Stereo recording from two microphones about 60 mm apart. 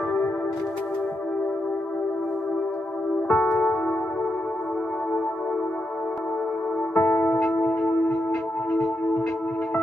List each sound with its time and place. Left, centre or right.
3.4 s music: centre
7.0 s music: left